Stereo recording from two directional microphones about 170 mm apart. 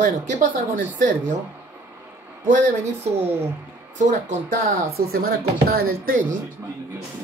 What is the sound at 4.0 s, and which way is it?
Speech, 50° right (ahead or behind).